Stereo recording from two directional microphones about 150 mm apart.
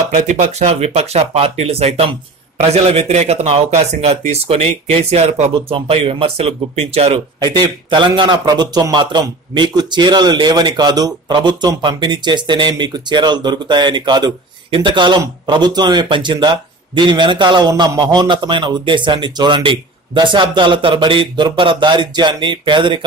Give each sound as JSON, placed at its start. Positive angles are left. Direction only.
{"t": 0.1, "sound": "a man's voice", "side_deg": -50}